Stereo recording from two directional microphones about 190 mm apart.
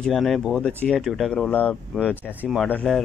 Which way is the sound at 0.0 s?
Centre (ahead or behind).